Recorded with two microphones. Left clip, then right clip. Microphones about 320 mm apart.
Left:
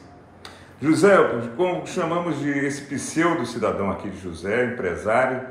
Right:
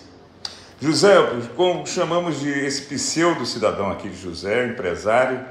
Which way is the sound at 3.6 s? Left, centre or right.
Centre.